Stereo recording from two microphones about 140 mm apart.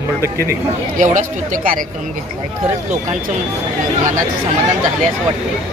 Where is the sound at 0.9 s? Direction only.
65° right (ahead or behind).